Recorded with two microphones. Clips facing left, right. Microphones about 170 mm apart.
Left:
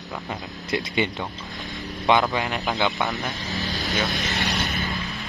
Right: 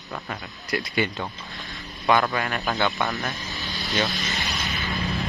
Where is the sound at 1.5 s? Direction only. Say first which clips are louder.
Left 5 dB; 20° left (ahead or behind).